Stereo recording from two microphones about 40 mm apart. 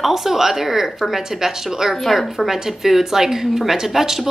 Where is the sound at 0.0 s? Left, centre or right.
Centre.